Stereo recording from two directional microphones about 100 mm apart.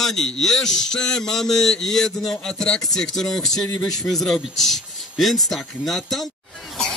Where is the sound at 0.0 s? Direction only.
5° left (ahead or behind).